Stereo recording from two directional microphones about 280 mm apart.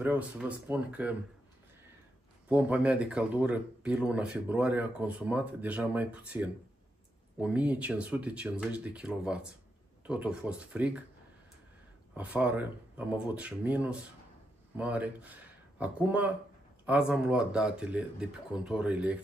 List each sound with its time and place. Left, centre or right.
0.0 s speech: centre
2.4 s speech: centre
12.1 s speech: centre